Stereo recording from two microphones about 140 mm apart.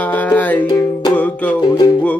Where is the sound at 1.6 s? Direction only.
30° left (ahead or behind).